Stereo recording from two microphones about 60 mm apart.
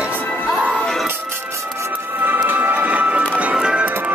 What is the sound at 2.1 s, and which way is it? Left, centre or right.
Music, right.